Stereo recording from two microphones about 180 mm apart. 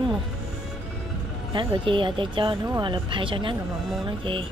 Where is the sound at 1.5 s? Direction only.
25° right (ahead or behind).